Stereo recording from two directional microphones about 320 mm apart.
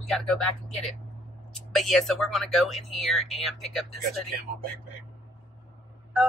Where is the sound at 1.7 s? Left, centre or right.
Centre.